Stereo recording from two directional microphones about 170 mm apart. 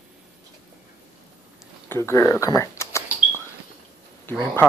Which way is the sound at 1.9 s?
15° left (ahead or behind).